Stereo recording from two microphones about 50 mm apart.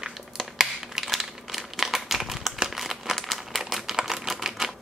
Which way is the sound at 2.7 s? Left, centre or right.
Centre.